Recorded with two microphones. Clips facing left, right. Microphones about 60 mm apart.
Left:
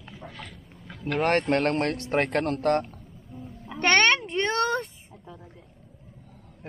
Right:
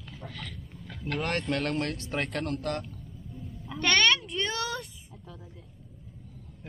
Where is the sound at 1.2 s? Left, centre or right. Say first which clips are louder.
Left 8 dB; left.